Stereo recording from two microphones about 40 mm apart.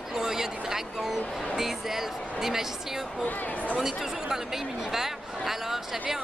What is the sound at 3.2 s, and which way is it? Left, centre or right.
Speech, left.